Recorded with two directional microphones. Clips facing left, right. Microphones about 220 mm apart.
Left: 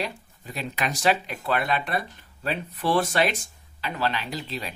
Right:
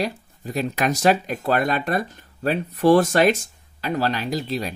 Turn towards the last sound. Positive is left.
turn(degrees=-40)  # may be behind; listen again after turning